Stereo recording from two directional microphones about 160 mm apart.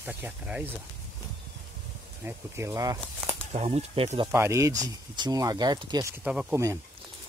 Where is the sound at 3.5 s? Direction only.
40° right (ahead or behind).